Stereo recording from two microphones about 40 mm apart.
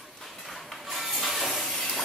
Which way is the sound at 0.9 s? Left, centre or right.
Centre.